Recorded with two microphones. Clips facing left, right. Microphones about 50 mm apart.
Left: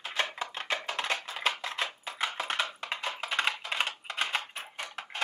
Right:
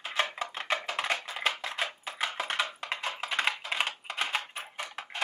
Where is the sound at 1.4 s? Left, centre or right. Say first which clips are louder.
Even; centre.